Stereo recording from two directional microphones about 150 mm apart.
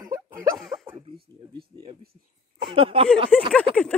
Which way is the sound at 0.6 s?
Centre (ahead or behind).